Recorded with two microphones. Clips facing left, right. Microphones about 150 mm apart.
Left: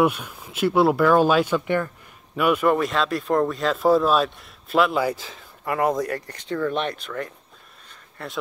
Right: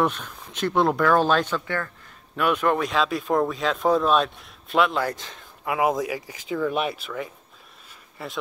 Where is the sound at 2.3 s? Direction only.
5° left (ahead or behind).